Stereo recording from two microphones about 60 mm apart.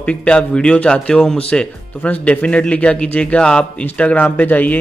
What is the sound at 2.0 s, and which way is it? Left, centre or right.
Speech, left.